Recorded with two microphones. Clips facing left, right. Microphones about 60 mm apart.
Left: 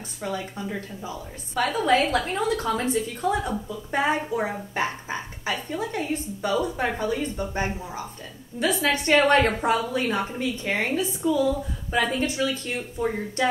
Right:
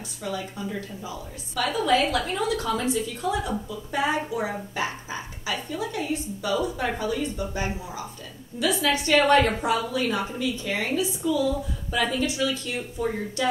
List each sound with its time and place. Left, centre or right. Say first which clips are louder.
0.2 s a woman's voice: left 1 dB; left
8.5 s a woman's voice: even; left